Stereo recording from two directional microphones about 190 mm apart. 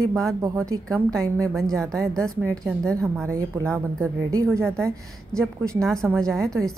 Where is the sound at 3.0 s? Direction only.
15° right (ahead or behind).